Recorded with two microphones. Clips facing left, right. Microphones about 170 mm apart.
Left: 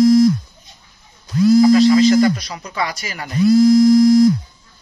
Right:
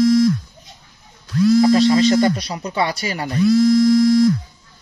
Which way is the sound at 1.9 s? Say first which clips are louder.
Left 2 dB; 30° right (ahead or behind).